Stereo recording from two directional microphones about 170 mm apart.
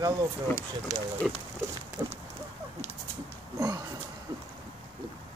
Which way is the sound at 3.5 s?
20° right (ahead or behind).